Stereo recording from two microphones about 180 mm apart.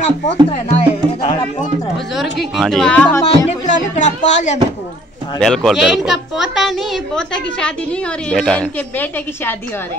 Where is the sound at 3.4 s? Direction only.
40° left (ahead or behind).